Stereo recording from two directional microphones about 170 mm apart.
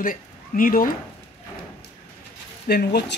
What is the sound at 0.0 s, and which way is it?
Speech, 55° left (ahead or behind).